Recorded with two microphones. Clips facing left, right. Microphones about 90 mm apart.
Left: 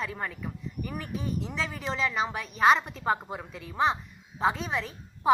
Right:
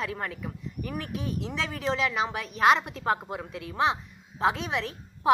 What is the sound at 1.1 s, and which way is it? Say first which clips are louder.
Speech: left 2 dB; 80° right.